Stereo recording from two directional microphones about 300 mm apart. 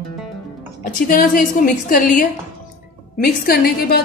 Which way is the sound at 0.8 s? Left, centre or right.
Left.